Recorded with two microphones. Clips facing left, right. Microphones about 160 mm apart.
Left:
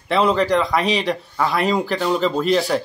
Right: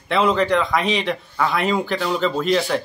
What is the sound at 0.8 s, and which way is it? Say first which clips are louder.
Speech: left 1 dB; 35° left (ahead or behind).